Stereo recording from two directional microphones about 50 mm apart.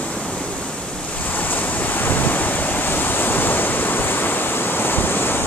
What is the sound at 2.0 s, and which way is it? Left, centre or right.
Waves, left.